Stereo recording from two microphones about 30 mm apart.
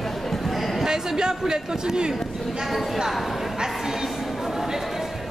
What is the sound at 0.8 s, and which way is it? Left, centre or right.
Speech, right.